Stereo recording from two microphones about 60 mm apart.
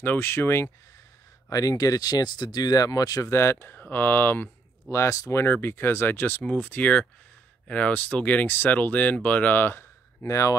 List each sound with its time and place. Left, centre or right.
0.0 s speech: left
1.5 s speech: left
3.3 s speech: left
3.7 s speech: left
4.9 s speech: left
5.3 s speech: left
10.2 s speech: left